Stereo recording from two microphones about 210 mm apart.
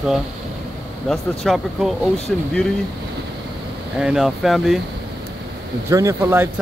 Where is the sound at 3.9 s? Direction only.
5° right (ahead or behind).